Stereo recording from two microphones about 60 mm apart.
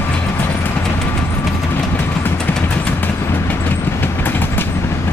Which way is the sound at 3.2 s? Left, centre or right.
Left.